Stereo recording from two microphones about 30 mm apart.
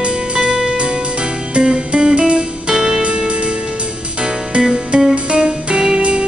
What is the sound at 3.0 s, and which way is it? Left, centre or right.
Music, right.